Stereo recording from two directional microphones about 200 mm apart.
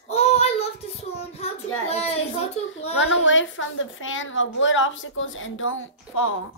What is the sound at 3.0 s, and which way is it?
A woman's voice, 70° left (ahead or behind).